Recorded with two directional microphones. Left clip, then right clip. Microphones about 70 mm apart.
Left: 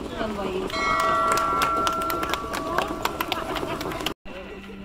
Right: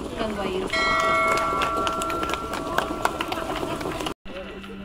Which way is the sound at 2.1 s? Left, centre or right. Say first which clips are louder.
Even; left.